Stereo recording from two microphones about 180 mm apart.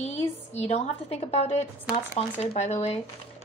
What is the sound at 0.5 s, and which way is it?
A woman's voice, 35° left (ahead or behind).